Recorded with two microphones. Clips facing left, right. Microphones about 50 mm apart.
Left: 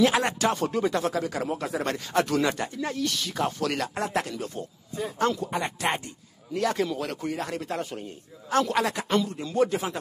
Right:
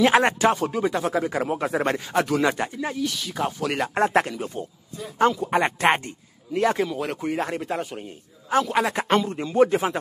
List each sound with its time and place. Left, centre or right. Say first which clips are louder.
0.0 s speech: right 4 dB; right
0.6 s speech: right 1 dB; centre
1.1 s speech: right 4 dB; right
2.0 s speech: right 2 dB; centre
3.9 s a man's voice: right 8 dB; right
4.3 s speech: right 3 dB; right
5.5 s a man's voice: right 7 dB; right
6.5 s speech: right 4 dB; right; by 8.9 s centre
8.9 s a man's voice: right 4 dB; right